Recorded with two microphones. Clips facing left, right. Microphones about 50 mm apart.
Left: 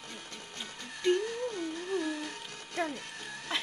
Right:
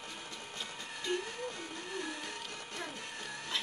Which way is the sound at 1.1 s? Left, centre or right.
Right.